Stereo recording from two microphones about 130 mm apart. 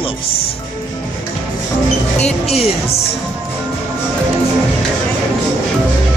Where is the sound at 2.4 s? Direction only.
50° left (ahead or behind).